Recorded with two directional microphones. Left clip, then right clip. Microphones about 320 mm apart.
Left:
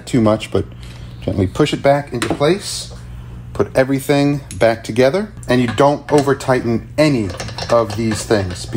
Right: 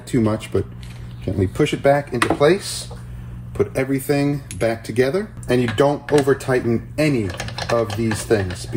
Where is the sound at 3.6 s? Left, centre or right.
Centre.